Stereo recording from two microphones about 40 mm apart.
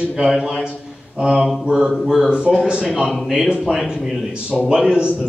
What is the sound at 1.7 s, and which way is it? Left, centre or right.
Mantra, centre.